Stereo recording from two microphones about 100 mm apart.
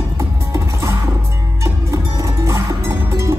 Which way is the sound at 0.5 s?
30° right (ahead or behind).